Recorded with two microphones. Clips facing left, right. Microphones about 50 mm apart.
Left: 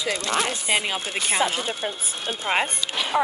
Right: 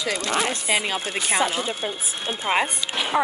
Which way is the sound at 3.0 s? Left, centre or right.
Centre.